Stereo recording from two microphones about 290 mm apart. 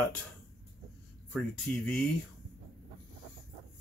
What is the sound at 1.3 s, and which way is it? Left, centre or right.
Speech, centre.